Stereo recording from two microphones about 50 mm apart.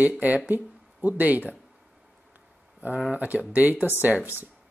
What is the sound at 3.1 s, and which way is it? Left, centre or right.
Speech, right.